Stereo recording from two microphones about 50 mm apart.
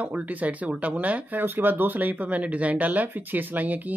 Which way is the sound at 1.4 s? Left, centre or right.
Right.